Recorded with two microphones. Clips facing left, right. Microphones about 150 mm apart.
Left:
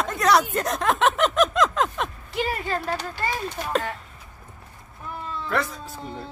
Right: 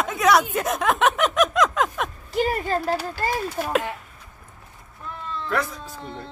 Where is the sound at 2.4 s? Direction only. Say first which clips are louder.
Right 4 dB; 40° right (ahead or behind).